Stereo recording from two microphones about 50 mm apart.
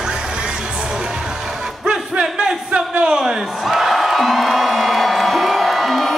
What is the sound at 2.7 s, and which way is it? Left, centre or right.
Music, centre.